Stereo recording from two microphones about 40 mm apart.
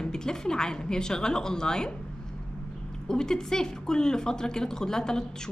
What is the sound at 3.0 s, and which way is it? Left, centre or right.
A woman's voice, centre.